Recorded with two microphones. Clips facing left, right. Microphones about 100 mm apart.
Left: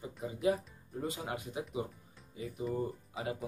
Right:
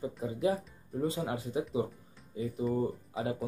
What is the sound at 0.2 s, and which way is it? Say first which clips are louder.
Speech: right 1 dB; 30° right (ahead or behind).